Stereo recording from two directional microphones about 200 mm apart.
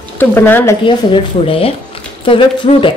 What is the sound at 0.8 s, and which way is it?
Speech, 25° left (ahead or behind).